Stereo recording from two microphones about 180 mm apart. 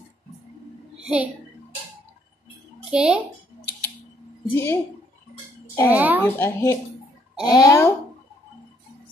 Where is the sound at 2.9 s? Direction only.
5° right (ahead or behind).